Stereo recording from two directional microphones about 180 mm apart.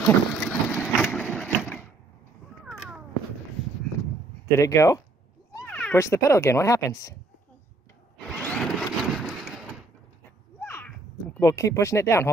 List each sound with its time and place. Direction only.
0.0 s a sound: 5° left (ahead or behind)
1.0 s vehicle: centre (ahead or behind)
4.6 s speech: 15° left (ahead or behind)
5.7 s speech: 5° left (ahead or behind)
8.4 s vehicle: centre (ahead or behind)
10.6 s a sound: 10° left (ahead or behind)
11.3 s speech: 15° left (ahead or behind)